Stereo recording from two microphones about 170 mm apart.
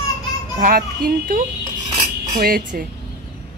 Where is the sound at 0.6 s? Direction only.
55° right (ahead or behind).